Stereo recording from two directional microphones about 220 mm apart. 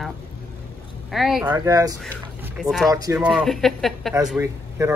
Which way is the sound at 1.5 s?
15° right (ahead or behind).